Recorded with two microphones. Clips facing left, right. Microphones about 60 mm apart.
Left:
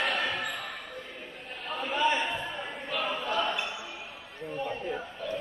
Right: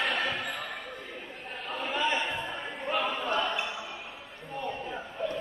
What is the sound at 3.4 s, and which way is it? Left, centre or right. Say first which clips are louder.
Basketball bounce: left 2 dB; centre.